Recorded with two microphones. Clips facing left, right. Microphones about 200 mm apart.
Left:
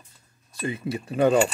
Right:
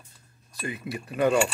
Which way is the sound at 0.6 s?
25° left (ahead or behind).